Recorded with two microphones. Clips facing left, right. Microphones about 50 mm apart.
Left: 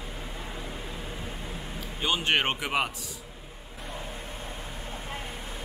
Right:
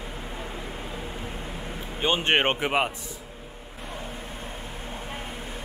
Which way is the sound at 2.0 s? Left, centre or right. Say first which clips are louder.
Right 4 dB; right.